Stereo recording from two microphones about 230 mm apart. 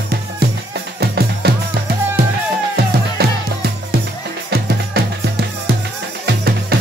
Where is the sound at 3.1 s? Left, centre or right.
Right.